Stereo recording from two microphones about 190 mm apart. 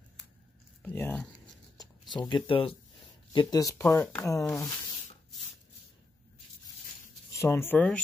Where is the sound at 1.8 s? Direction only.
25° left (ahead or behind).